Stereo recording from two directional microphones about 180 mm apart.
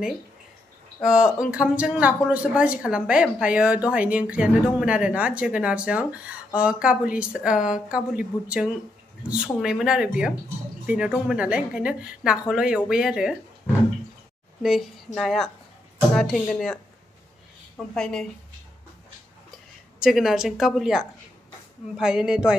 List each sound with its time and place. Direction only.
1.0 s a woman's voice: 5° right (ahead or behind)
14.6 s a woman's voice: centre (ahead or behind)
20.0 s a woman's voice: centre (ahead or behind)